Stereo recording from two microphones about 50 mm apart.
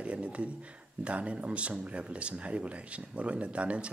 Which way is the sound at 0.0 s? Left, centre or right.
Right.